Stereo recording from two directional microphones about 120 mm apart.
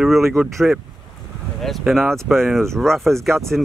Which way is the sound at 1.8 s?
Centre (ahead or behind).